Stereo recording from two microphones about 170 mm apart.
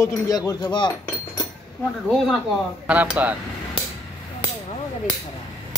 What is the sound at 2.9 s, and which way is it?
Speech, 10° right (ahead or behind).